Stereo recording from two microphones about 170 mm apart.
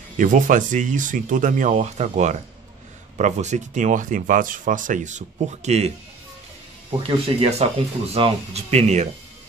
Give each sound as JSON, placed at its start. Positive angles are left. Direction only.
{"t": 0.2, "sound": "speech", "side_deg": -50}